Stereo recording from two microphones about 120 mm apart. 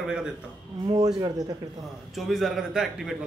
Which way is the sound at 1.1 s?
35° right (ahead or behind).